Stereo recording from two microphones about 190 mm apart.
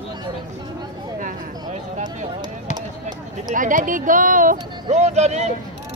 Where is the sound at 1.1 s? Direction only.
45° right (ahead or behind).